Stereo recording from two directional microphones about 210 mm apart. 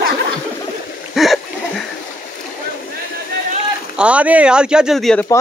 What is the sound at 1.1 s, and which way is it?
Splash, centre (ahead or behind).